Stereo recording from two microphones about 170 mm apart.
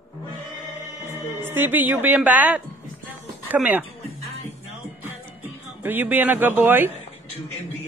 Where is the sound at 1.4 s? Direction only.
10° right (ahead or behind).